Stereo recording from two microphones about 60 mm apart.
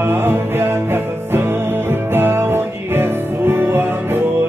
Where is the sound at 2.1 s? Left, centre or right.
Right.